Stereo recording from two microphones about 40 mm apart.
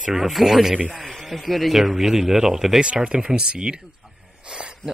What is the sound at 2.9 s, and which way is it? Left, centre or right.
Speech, right.